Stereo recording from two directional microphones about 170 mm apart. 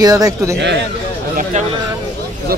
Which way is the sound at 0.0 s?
20° right (ahead or behind).